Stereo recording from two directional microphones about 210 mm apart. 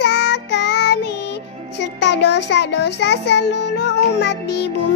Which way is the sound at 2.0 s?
55° left (ahead or behind).